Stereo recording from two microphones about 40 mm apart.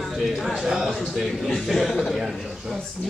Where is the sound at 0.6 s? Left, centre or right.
Centre.